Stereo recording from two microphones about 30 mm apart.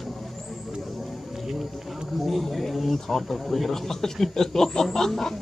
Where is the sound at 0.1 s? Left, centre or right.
Centre.